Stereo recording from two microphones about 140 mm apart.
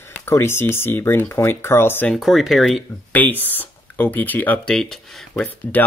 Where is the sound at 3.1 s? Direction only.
15° left (ahead or behind).